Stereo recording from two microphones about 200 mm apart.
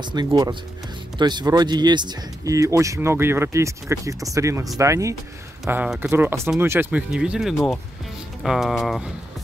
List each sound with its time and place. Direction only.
0.0 s speech: 20° right (ahead or behind); by 9.0 s centre (ahead or behind)